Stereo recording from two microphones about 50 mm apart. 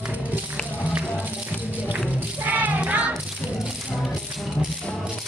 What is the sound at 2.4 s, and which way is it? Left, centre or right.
Music, right.